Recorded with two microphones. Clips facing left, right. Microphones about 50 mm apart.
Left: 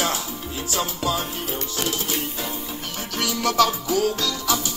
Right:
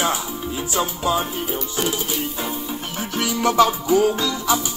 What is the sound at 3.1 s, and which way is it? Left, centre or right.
Music, centre.